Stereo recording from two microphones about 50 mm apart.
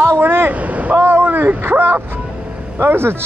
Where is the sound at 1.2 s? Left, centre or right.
Right.